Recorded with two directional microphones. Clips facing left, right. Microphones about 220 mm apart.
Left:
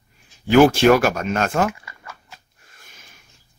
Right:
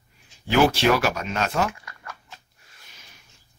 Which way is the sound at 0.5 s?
50° left (ahead or behind).